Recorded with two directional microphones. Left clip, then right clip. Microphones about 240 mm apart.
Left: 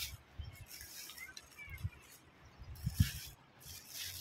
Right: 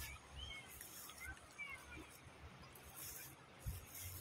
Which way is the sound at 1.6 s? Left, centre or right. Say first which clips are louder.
Right 3 dB; right.